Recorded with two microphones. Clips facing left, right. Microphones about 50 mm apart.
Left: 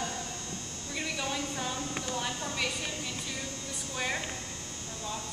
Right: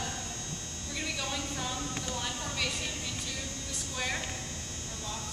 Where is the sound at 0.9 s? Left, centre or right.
Centre.